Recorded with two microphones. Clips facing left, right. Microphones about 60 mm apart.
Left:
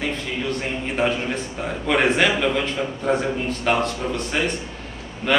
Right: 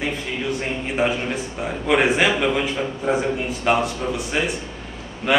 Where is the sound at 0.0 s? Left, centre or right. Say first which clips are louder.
Even; centre.